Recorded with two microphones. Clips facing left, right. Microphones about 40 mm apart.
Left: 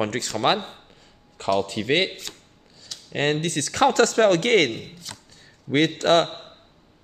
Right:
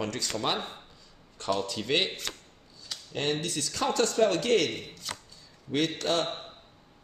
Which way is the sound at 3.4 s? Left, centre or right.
Left.